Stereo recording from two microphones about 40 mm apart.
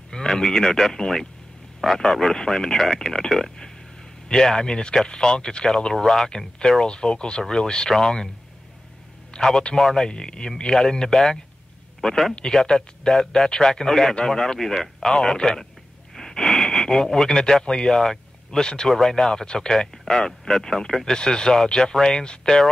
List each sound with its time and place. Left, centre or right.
0.1 s speech: centre
9.3 s a man's voice: centre
9.8 s speech: centre
10.0 s a man's voice: centre
19.4 s speech: centre